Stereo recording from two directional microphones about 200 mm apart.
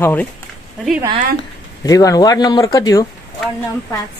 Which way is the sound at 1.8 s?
15° left (ahead or behind).